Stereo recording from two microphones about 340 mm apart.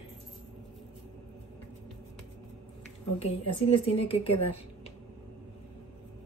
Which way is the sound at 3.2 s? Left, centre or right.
Centre.